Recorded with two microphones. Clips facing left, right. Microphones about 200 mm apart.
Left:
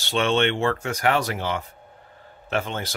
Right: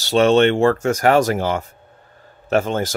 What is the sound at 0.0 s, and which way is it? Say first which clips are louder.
Speech: right 8 dB; 40° right (ahead or behind).